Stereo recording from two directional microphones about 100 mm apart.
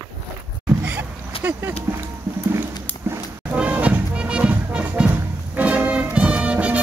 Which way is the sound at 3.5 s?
10° right (ahead or behind).